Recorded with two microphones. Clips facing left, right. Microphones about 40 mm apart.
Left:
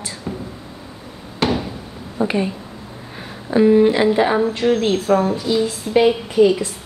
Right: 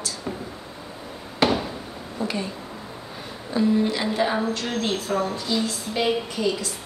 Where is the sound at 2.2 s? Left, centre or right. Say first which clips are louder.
Left 8 dB; left.